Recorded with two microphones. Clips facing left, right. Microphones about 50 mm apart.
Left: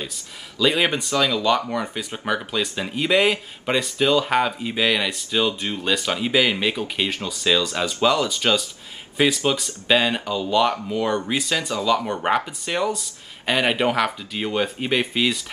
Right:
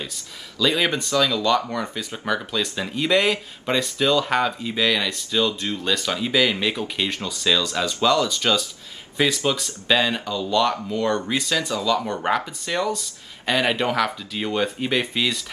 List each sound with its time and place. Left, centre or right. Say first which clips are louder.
0.6 s speech: left 1 dB; centre